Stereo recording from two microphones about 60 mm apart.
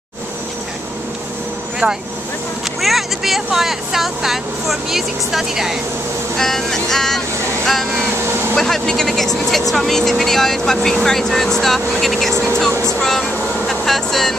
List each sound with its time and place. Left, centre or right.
2.8 s speech: centre
6.3 s speech: centre
8.2 s speech: right
8.5 s speech: centre